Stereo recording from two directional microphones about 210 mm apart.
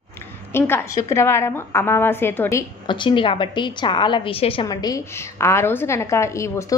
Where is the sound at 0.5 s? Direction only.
10° left (ahead or behind).